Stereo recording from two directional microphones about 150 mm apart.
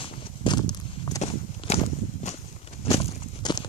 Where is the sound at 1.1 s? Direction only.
45° left (ahead or behind).